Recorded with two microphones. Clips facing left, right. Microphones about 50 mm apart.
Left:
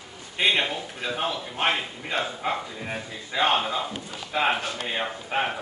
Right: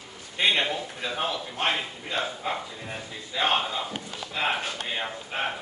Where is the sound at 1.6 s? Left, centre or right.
Left.